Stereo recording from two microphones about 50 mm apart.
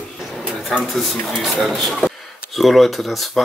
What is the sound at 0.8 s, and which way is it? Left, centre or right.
Speech, centre.